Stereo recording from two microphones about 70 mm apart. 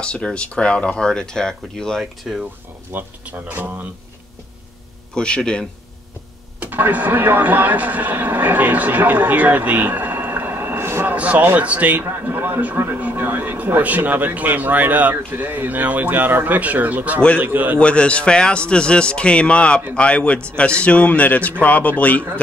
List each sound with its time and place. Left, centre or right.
0.0 s speech: centre
2.3 s speech: centre
2.9 s speech: right
5.1 s speech: centre
6.6 s speech: right
11.1 s speech: right
12.0 s speech: right
17.7 s speech: centre